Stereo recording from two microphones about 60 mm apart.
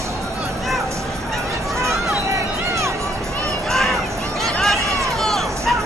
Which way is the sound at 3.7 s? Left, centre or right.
Centre.